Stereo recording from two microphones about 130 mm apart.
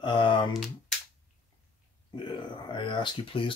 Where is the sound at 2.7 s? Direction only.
40° left (ahead or behind).